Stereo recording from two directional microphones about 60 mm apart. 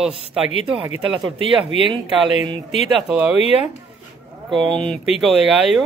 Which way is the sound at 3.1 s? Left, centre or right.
Centre.